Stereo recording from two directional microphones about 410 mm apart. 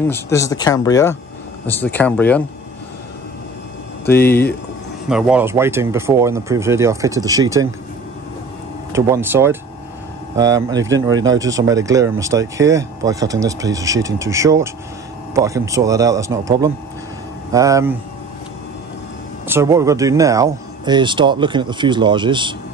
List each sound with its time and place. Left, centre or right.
0.0 s speech: centre
4.2 s speech: left
5.0 s speech: centre
8.9 s speech: centre
19.4 s speech: centre